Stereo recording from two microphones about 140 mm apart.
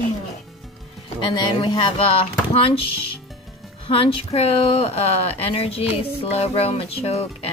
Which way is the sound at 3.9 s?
40° left (ahead or behind).